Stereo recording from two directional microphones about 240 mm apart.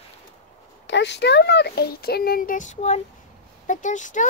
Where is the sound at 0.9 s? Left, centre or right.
Left.